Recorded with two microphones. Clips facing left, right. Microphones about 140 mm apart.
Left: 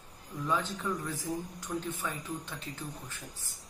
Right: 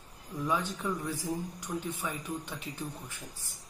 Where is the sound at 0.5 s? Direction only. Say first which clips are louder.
Even; 15° right (ahead or behind).